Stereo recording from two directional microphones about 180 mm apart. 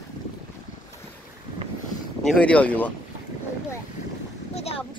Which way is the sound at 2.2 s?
5° left (ahead or behind).